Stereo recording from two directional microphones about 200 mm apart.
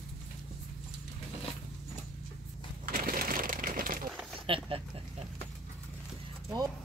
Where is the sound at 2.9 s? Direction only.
45° right (ahead or behind).